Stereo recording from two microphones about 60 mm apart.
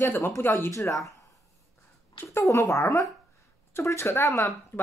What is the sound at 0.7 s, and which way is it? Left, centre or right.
Speech, left.